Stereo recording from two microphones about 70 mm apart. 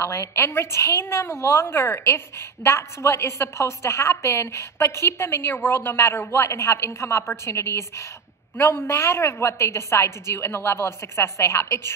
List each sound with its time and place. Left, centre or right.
0.0 s a woman's voice: left